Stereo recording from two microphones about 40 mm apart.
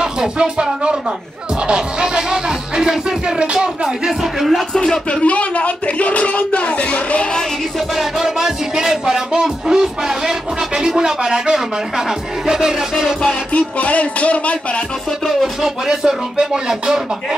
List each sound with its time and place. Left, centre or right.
0.0 s music: centre
4.4 s speech: centre
4.7 s speech: centre
5.2 s speech: left
7.9 s music: centre
13.2 s speech: left
15.6 s music: centre